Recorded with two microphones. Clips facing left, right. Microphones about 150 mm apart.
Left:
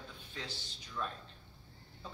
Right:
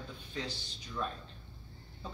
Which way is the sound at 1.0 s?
10° right (ahead or behind).